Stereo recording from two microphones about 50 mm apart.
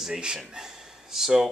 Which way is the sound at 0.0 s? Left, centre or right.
Centre.